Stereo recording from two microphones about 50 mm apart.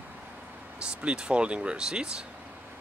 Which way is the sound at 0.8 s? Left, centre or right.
Right.